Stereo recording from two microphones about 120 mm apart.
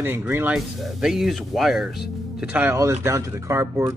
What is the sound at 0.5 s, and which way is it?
Speech, centre (ahead or behind).